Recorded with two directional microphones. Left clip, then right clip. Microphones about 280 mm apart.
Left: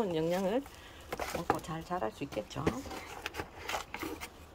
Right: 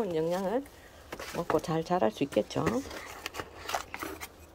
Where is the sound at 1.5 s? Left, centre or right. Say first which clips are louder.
Right 9 dB; right.